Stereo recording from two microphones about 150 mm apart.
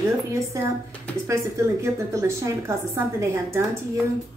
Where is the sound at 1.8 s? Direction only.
20° right (ahead or behind).